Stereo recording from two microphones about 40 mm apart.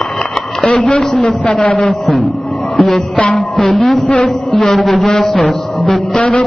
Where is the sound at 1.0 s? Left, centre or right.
Centre.